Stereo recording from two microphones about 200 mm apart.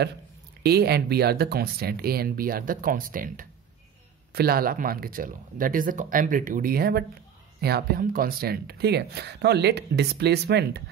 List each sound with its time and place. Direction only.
0.6 s speech: 55° right (ahead or behind)